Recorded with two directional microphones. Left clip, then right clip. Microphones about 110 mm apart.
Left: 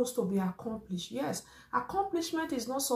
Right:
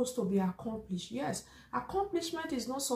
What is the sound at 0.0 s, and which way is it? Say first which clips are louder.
A woman's voice: left 1 dB; 10° right (ahead or behind).